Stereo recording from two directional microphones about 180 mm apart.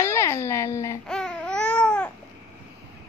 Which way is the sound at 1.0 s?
5° left (ahead or behind).